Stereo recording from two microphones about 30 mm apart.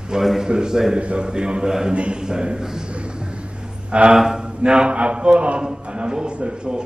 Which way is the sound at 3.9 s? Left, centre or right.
Right.